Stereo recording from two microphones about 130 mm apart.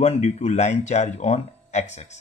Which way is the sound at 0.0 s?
55° left (ahead or behind).